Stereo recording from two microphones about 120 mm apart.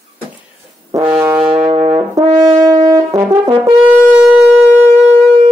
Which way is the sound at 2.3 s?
25° right (ahead or behind).